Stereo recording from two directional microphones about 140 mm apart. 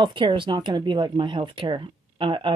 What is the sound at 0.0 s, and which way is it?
Speech, 35° right (ahead or behind).